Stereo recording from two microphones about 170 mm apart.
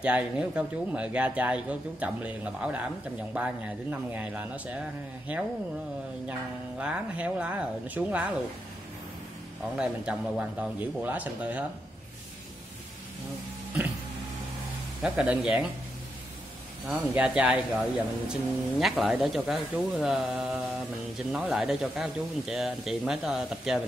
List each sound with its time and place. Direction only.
0.0 s speech: 10° right (ahead or behind)
6.8 s speech: 5° right (ahead or behind)
9.8 s speech: 5° right (ahead or behind)
15.0 s speech: 5° right (ahead or behind)
16.9 s speech: 10° right (ahead or behind)